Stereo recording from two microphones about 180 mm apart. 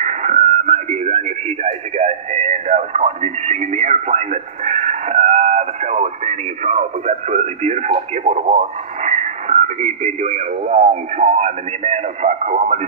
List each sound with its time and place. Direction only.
0.0 s radio: 40° right (ahead or behind)
9.0 s speech: 40° right (ahead or behind)